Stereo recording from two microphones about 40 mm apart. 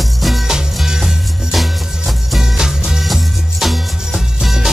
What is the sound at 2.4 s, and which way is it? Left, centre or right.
Music, centre.